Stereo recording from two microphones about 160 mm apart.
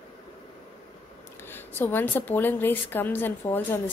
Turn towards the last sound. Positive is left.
turn(degrees=15)  # may be behind; listen again after turning